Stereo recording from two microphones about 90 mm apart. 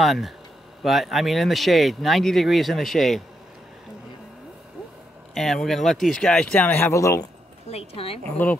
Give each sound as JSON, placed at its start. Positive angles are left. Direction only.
{"t": 0.0, "sound": "speech", "side_deg": 0}
{"t": 5.3, "sound": "speech", "side_deg": 5}
{"t": 6.9, "sound": "speech", "side_deg": 35}
{"t": 7.8, "sound": "a woman's voice", "side_deg": 90}
{"t": 8.4, "sound": "speech", "side_deg": 20}